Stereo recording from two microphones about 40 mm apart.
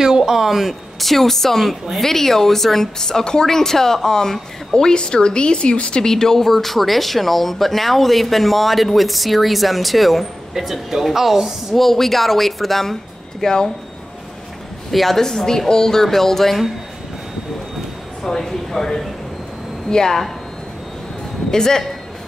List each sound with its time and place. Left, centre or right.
0.0 s speech: centre
1.0 s a woman's voice: centre; by 6.0 s left
6.0 s speech: centre
11.7 s speech: centre
13.4 s speech: centre
14.9 s a woman's voice: centre
18.2 s a woman's voice: centre
21.5 s a woman's voice: centre